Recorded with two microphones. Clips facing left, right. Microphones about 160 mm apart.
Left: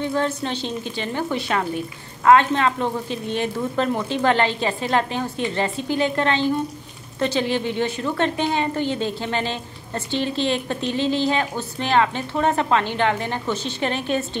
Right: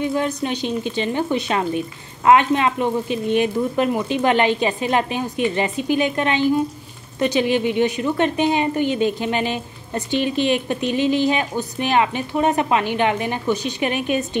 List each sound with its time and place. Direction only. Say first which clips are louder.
0.0 s a woman's voice: right 2 dB; 15° right (ahead or behind)